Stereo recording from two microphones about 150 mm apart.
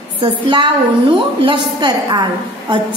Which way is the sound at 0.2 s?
35° right (ahead or behind).